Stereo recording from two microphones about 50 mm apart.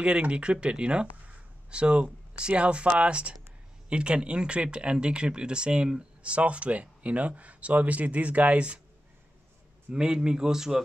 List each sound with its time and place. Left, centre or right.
0.0 s speech: right
9.8 s a man's voice: centre